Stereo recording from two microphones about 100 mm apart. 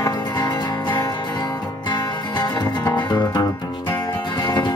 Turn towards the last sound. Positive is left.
turn(degrees=45)  # may be behind; listen again after turning